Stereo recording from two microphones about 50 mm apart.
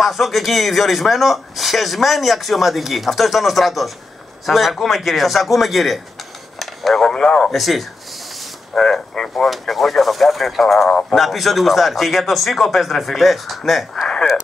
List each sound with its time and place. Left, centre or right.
0.0 s speech: centre
7.5 s speech: centre
8.7 s a man's voice: centre
11.1 s speech: centre